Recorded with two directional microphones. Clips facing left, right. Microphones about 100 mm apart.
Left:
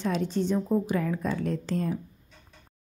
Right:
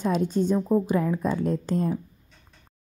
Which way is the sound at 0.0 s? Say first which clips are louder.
Right 4 dB; 45° right (ahead or behind).